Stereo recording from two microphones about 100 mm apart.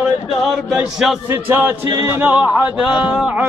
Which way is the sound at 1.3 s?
25° right (ahead or behind).